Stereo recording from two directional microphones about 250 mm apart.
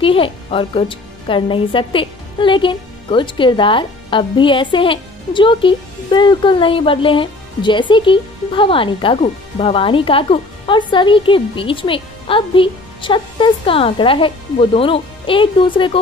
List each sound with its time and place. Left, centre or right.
0.0 s a woman's voice: left